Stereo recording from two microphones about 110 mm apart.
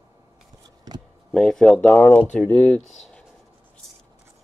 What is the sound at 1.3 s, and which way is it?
Speech, 5° left (ahead or behind).